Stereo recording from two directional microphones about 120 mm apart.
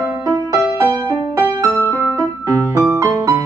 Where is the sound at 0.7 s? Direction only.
30° right (ahead or behind).